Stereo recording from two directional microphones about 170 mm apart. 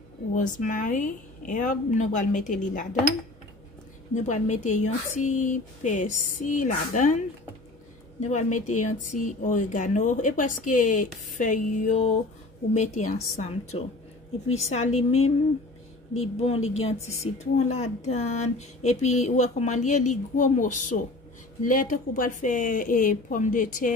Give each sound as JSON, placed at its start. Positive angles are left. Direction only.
{"t": 0.3, "sound": "a woman's voice", "side_deg": 50}
{"t": 4.1, "sound": "a woman's voice", "side_deg": 45}